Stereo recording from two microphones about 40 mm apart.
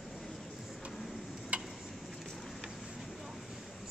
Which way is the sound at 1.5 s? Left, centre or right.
Right.